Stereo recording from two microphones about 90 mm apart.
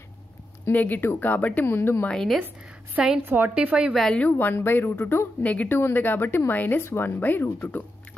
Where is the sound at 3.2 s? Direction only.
20° right (ahead or behind).